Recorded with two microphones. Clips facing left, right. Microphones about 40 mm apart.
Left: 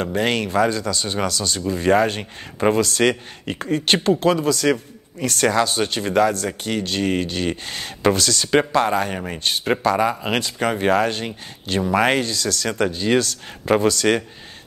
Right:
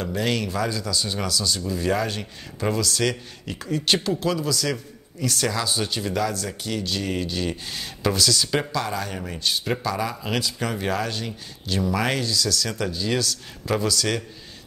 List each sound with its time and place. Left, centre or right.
0.0 s speech: left